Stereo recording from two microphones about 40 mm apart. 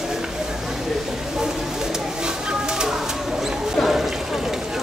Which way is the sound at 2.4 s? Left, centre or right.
Centre.